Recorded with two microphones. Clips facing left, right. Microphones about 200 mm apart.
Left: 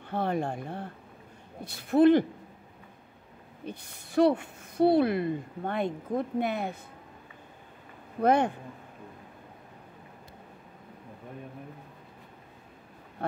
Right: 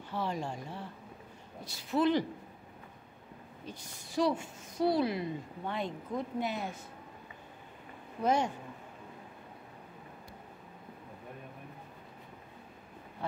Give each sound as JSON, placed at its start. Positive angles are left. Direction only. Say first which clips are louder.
{"t": 0.1, "sound": "a woman's voice", "louder": "left 6 dB", "side_deg": 55}
{"t": 3.6, "sound": "a woman's voice", "louder": "left 7 dB", "side_deg": 60}
{"t": 8.2, "sound": "a woman's voice", "louder": "left 6 dB", "side_deg": 60}